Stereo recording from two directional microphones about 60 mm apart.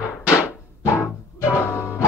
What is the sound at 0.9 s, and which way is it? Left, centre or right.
Music, left.